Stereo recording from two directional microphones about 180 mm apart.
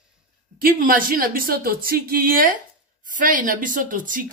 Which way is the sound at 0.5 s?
55° right (ahead or behind).